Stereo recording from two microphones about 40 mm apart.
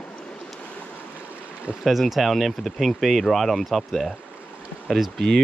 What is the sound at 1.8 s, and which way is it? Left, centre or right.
Speech, centre.